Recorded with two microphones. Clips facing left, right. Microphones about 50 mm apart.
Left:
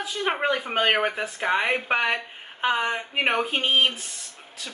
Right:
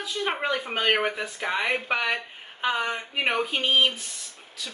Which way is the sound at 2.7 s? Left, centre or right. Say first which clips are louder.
Left 2 dB; centre.